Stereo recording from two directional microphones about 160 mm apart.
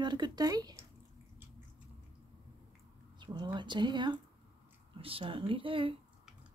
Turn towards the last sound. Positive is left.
turn(degrees=-35)  # may be behind; listen again after turning